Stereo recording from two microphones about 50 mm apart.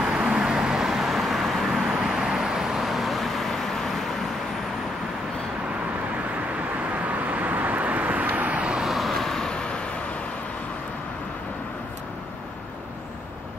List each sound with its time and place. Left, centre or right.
0.3 s vehicle: centre
7.1 s vehicle: right
8.8 s vehicle: centre